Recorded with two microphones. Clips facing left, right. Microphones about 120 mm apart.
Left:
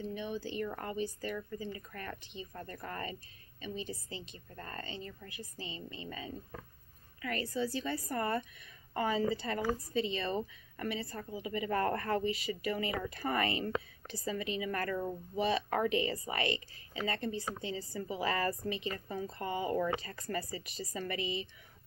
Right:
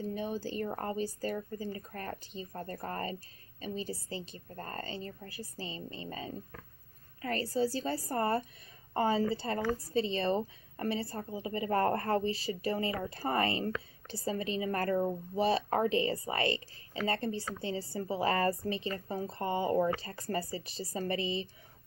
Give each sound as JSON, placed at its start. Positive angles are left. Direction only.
{"t": 0.0, "sound": "a woman's voice", "side_deg": -35}